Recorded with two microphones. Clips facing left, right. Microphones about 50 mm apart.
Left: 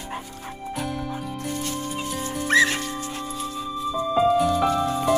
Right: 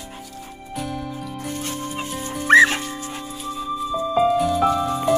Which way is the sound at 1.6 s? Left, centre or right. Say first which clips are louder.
Right 1 dB; right.